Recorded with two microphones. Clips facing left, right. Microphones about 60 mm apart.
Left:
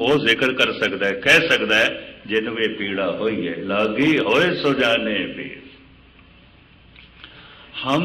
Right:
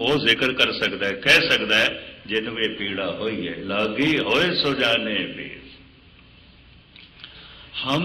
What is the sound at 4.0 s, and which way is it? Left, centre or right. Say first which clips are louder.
A man's voice: left 4 dB; centre.